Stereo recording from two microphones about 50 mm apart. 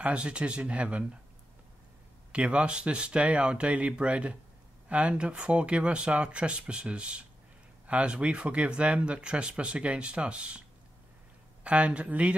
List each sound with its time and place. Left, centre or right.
0.0 s speech: right
2.3 s speech: right
11.6 s speech: right